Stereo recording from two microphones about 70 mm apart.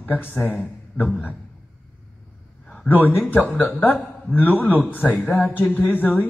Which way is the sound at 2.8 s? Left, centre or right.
Left.